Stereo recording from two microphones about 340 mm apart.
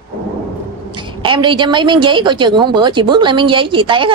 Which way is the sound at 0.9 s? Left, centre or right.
Centre.